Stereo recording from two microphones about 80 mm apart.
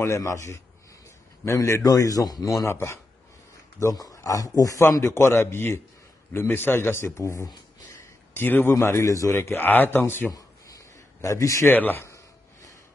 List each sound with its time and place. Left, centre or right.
0.0 s speech: left
3.8 s a man's voice: left
9.6 s speech: left
10.3 s a sound: left
11.7 s speech: left